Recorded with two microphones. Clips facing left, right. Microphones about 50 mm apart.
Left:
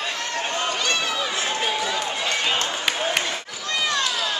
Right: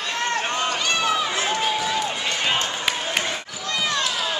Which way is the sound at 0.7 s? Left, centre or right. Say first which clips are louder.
Right 2 dB; centre.